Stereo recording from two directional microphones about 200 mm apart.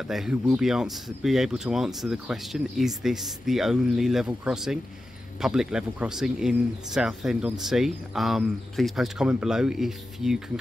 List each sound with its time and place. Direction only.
0.1 s speech: 5° right (ahead or behind)